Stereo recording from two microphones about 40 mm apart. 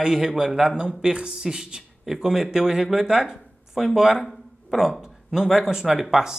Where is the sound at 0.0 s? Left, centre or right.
Centre.